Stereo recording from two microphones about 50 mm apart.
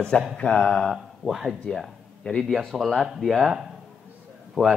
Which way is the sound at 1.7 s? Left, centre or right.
Centre.